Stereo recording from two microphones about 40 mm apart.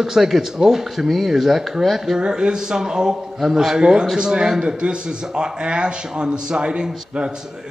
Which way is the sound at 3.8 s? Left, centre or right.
Right.